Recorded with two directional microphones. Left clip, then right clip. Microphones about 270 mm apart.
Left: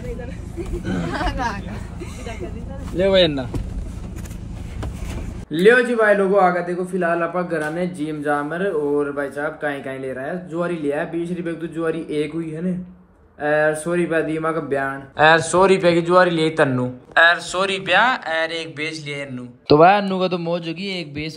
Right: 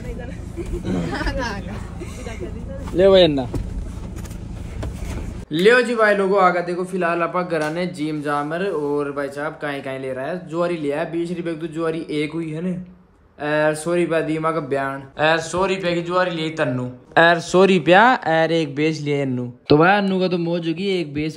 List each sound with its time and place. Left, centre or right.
0.6 s speech: centre
5.5 s a man's voice: centre
17.1 s speech: right
19.7 s speech: centre